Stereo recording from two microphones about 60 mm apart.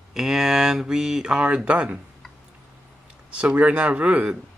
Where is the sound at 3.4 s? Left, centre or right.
Centre.